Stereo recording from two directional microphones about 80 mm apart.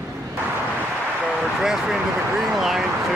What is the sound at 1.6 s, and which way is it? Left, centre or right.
Speech, centre.